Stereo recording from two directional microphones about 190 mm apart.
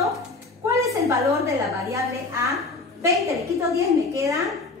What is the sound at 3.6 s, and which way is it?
Speech, 15° right (ahead or behind).